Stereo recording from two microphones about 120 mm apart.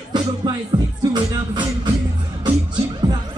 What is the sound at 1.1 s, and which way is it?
Music, 40° right (ahead or behind).